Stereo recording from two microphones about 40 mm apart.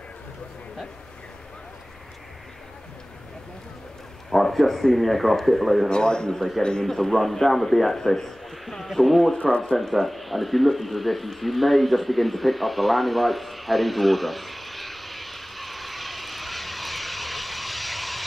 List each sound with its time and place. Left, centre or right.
4.3 s speech: centre
5.9 s a man's voice: left
6.3 s a man's voice: centre
6.6 s a man's voice: centre
6.9 s a man's voice: centre
9.6 s a sound: centre